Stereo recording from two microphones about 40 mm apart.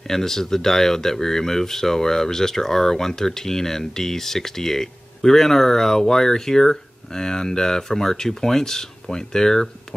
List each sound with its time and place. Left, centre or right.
0.1 s speech: centre